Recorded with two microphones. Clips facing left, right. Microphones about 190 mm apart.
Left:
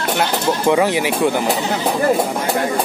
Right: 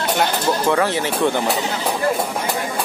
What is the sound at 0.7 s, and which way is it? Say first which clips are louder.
Speech: left 3 dB; 15° left (ahead or behind).